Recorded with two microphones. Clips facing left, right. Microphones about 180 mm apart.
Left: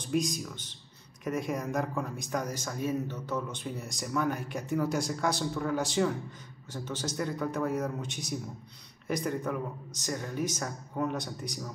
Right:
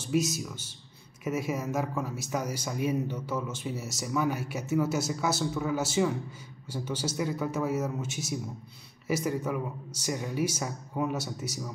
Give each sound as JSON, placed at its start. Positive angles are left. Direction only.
{"t": 0.0, "sound": "speech", "side_deg": -5}